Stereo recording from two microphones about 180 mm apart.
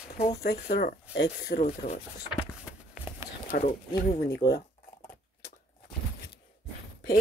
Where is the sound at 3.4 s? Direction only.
45° left (ahead or behind).